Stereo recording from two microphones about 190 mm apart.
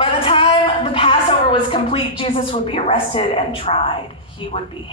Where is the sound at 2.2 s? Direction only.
30° left (ahead or behind).